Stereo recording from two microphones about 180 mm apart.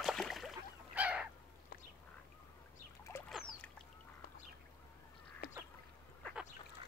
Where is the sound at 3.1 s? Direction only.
15° left (ahead or behind).